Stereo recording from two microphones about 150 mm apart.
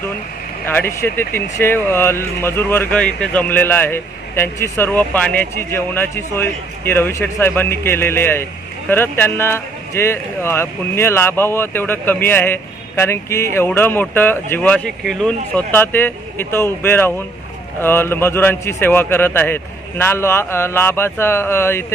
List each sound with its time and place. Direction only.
0.7 s speech: 15° left (ahead or behind)